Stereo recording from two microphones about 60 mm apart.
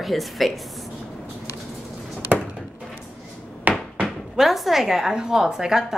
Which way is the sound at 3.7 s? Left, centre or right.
Right.